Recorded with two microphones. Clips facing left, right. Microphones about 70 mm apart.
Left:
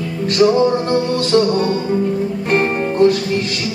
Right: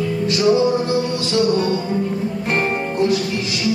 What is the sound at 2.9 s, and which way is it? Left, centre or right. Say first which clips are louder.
Music: left 6 dB; left.